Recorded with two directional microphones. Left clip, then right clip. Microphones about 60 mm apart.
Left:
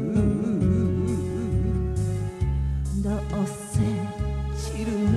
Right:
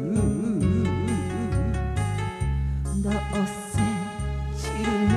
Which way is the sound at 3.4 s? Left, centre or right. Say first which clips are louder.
Right 2 dB; left.